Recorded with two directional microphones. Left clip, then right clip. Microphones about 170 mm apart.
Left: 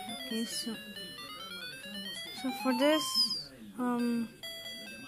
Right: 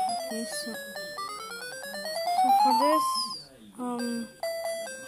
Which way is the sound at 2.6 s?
Centre (ahead or behind).